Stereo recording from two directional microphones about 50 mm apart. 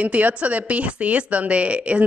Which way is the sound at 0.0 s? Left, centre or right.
Right.